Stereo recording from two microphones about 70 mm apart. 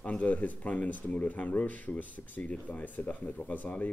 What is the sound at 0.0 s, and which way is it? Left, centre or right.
Speech, centre.